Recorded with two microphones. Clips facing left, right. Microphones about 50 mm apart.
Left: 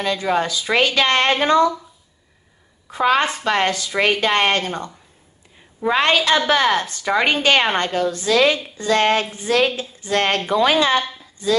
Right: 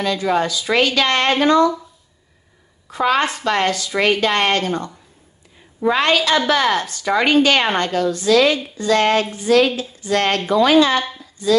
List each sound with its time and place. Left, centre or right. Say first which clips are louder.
0.0 s speech: right 1 dB; left
2.9 s speech: even; left